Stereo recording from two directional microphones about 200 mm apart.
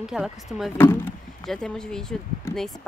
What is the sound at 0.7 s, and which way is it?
A woman's voice, 10° left (ahead or behind).